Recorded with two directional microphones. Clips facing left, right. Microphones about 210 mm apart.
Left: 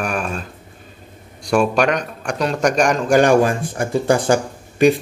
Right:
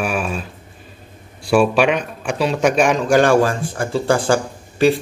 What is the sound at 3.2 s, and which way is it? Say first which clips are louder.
Speech: left 1 dB; 15° left (ahead or behind).